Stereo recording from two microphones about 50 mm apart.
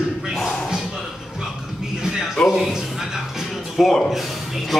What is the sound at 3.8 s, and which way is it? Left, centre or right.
Speech, centre.